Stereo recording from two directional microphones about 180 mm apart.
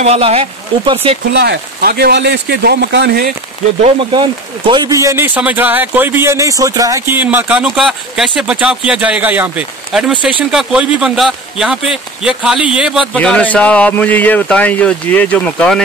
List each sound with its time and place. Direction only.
0.0 s speech: 35° right (ahead or behind)
1.3 s speech: 65° right (ahead or behind)
3.8 s speech: 25° right (ahead or behind); by 13.1 s 5° right (ahead or behind)
13.1 s a man's voice: 5° left (ahead or behind)